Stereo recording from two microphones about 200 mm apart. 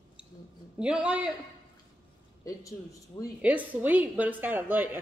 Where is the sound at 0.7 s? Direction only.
5° right (ahead or behind).